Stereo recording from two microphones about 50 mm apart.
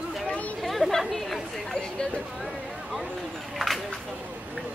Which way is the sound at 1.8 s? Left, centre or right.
Centre.